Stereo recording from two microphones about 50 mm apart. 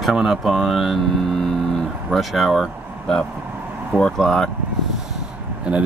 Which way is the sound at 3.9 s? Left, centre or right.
Right.